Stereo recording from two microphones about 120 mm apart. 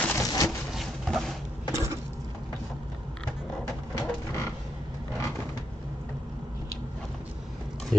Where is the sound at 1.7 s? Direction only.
25° right (ahead or behind).